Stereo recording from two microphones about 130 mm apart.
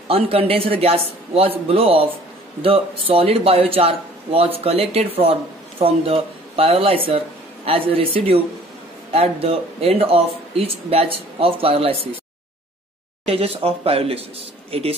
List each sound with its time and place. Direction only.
0.1 s speech: 45° right (ahead or behind)
13.2 s speech: 50° right (ahead or behind)